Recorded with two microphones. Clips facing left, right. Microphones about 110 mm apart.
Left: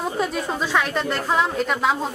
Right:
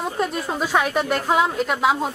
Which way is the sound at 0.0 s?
Centre (ahead or behind).